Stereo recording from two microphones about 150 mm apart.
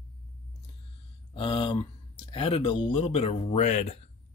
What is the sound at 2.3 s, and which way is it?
Speech, 35° left (ahead or behind).